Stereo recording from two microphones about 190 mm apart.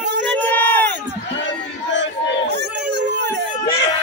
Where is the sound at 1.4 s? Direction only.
70° left (ahead or behind).